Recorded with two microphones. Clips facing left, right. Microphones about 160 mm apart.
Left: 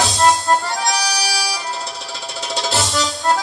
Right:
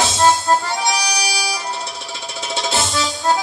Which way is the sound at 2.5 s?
Centre (ahead or behind).